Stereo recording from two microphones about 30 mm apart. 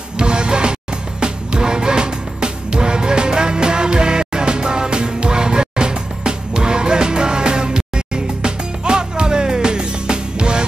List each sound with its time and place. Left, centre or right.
0.2 s music: right